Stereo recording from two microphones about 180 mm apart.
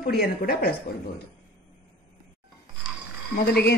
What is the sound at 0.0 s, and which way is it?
Speech, 60° left (ahead or behind).